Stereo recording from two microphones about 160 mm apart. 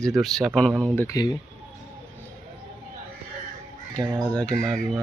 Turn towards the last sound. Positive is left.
turn(degrees=5)  # may be behind; listen again after turning